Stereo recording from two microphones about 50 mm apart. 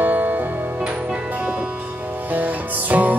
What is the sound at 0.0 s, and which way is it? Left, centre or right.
Music, right.